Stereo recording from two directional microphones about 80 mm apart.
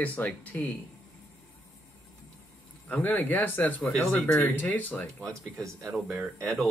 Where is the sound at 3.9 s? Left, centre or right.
Centre.